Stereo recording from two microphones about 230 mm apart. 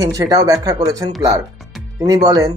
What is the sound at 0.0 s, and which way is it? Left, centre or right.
Speech, centre.